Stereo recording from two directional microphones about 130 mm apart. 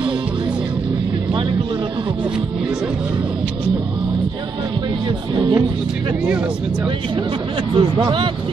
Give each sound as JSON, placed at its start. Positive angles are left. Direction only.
{"t": 5.3, "sound": "speech", "side_deg": -35}
{"t": 7.7, "sound": "speech", "side_deg": -40}